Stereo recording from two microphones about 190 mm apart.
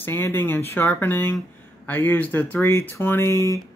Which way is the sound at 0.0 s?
10° left (ahead or behind).